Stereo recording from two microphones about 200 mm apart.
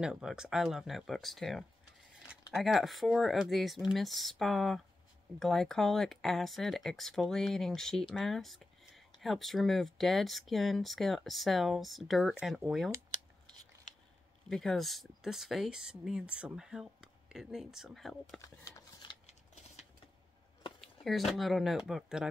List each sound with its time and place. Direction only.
0.0 s speech: 5° right (ahead or behind)
14.5 s speech: centre (ahead or behind)
18.6 s a sound: 20° left (ahead or behind)
19.2 s scissors: 35° left (ahead or behind)
20.8 s speech: centre (ahead or behind)